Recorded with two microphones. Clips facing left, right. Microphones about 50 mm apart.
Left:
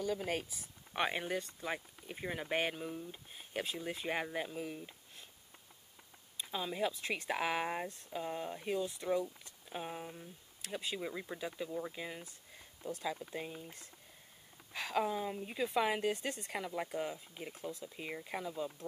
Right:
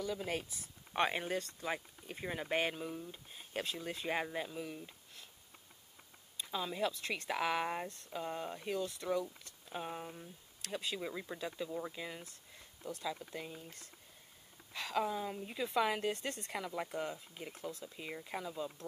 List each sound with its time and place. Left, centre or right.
0.0 s speech: centre
0.9 s a woman's voice: centre
6.3 s a woman's voice: centre
14.9 s a woman's voice: centre